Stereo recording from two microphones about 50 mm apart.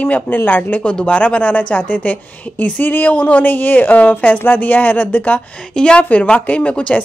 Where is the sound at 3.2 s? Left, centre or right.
Left.